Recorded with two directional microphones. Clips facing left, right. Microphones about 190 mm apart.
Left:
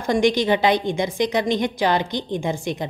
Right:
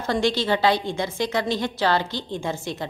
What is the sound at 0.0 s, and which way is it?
A woman's voice, 15° left (ahead or behind).